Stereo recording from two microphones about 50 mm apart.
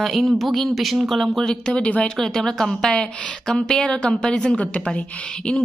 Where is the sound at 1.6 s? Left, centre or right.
Centre.